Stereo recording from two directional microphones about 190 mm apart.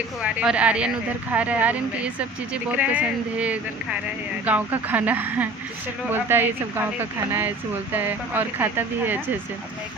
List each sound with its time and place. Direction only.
0.2 s speech: 5° right (ahead or behind)